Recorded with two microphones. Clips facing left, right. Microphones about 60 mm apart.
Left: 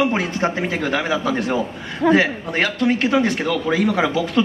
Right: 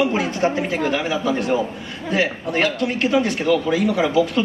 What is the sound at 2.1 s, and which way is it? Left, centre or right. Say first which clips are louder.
A man's voice: left 2 dB; left.